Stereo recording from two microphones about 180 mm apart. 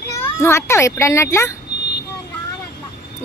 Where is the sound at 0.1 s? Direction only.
15° left (ahead or behind).